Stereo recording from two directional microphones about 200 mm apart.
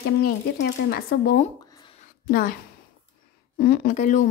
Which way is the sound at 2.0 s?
45° left (ahead or behind).